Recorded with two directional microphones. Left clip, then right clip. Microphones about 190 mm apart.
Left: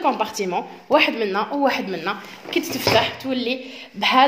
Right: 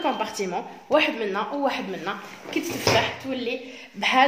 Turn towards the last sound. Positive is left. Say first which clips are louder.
# left 3 dB
turn(degrees=30)  # may be behind; listen again after turning